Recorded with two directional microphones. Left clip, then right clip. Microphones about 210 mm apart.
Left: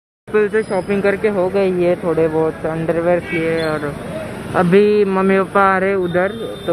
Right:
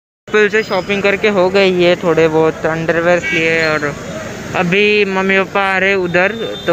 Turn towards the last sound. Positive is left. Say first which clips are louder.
# right 5 dB
turn(degrees=0)  # may be behind; listen again after turning